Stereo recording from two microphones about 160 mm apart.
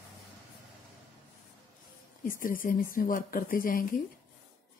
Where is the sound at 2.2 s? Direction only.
60° left (ahead or behind).